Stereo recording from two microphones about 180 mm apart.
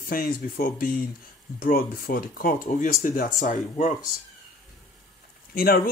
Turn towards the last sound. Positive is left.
turn(degrees=55)  # may be behind; listen again after turning